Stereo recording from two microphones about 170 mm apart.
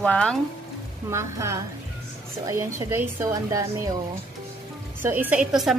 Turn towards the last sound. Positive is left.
turn(degrees=0)  # may be behind; listen again after turning